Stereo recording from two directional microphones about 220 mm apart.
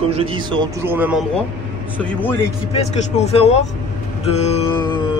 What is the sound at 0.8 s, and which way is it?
Speech, 10° right (ahead or behind).